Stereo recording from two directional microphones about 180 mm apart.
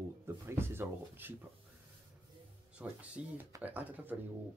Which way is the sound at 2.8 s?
10° right (ahead or behind).